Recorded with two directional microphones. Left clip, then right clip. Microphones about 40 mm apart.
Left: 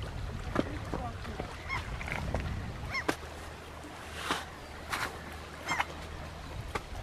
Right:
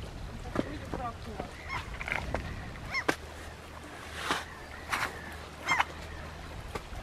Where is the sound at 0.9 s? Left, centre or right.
Centre.